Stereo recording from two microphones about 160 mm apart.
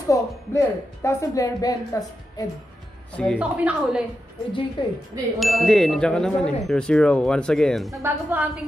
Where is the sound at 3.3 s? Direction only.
5° right (ahead or behind).